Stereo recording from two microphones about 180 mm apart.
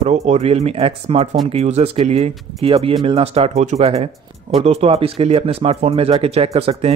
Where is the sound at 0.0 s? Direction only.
40° right (ahead or behind).